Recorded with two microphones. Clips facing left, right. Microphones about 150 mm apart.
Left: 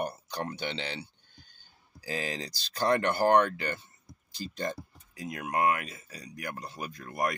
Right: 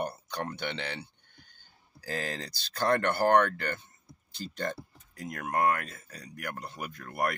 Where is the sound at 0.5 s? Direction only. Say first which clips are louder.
Even; 55° right (ahead or behind).